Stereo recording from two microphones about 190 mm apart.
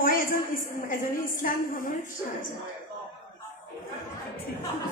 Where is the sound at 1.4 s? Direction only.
45° left (ahead or behind).